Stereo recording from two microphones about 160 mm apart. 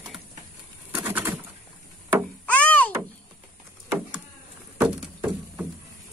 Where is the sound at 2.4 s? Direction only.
10° left (ahead or behind).